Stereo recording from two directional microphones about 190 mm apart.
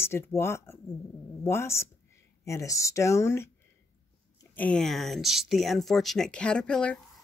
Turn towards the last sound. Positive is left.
turn(degrees=5)  # may be behind; listen again after turning